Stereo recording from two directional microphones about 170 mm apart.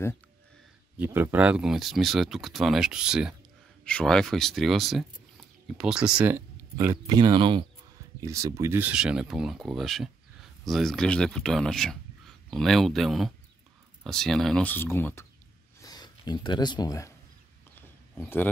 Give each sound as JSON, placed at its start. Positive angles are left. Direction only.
{"t": 0.9, "sound": "speech", "side_deg": -10}
{"t": 15.8, "sound": "speech", "side_deg": 25}
{"t": 17.7, "sound": "a sound", "side_deg": 10}